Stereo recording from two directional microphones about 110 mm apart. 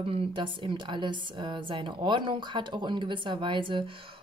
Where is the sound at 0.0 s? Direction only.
55° right (ahead or behind).